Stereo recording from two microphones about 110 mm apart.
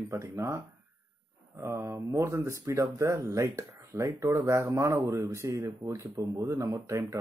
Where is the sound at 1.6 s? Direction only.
25° right (ahead or behind).